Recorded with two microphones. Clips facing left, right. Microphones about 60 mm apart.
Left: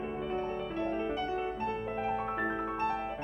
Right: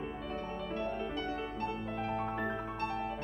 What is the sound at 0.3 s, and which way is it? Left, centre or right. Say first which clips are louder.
Music: left 4 dB; centre.